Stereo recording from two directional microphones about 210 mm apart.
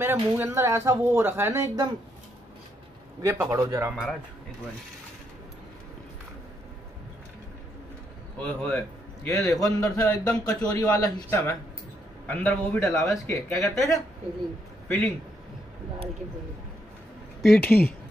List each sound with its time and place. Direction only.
0.0 s speech: 10° right (ahead or behind)
3.2 s speech: 15° right (ahead or behind)
8.4 s a man's voice: 5° left (ahead or behind)
17.4 s a man's voice: 5° left (ahead or behind)